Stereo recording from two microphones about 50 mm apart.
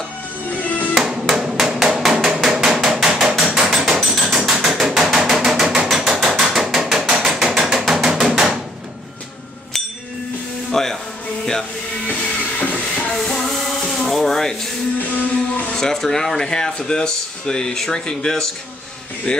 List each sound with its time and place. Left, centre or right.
0.5 s music: left
1.3 s hammer: centre
3.4 s hammer: centre
3.7 s hammer: centre
8.1 s a sound: centre
10.7 s music: centre
12.1 s music: left
12.9 s music: centre
13.5 s music: centre
15.0 s music: left
15.8 s speech: centre